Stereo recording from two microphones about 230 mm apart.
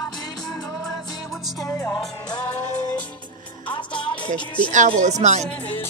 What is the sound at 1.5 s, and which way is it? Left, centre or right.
Music, centre.